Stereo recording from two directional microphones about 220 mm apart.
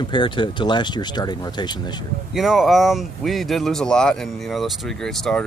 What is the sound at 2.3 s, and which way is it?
Speech, centre (ahead or behind).